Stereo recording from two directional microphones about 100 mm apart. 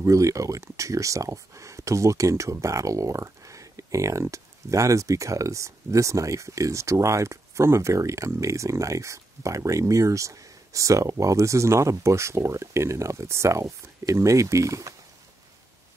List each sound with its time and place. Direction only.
0.0 s speech: 35° right (ahead or behind)